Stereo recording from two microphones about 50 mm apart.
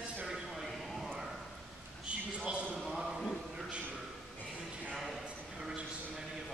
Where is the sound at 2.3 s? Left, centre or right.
Centre.